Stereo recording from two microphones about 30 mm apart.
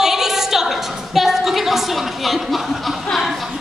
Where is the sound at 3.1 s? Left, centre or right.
Centre.